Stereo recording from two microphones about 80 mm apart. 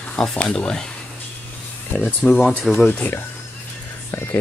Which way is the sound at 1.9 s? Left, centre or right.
Left.